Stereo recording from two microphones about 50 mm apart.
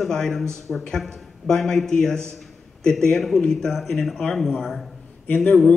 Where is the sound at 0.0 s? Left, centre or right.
Centre.